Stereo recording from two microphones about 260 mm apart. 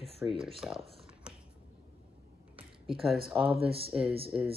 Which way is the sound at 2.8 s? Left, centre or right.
Centre.